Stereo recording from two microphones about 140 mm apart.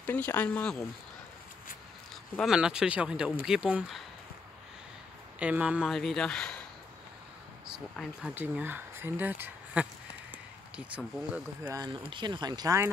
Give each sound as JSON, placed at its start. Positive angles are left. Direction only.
{"t": 0.0, "sound": "speech", "side_deg": 15}
{"t": 2.4, "sound": "speech", "side_deg": -5}
{"t": 5.4, "sound": "speech", "side_deg": -10}
{"t": 7.9, "sound": "speech", "side_deg": 5}
{"t": 8.4, "sound": "speech", "side_deg": -15}
{"t": 11.7, "sound": "speech", "side_deg": -30}